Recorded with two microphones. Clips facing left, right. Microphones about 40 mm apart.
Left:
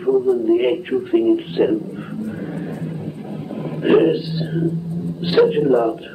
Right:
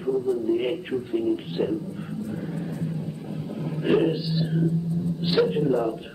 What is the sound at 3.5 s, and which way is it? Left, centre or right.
A man's voice, left.